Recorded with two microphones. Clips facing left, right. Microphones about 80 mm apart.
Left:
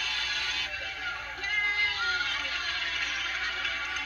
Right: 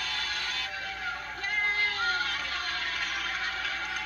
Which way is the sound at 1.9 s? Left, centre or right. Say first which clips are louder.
Right 1 dB; right.